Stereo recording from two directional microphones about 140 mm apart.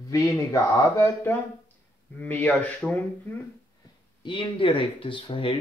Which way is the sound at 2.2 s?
10° left (ahead or behind).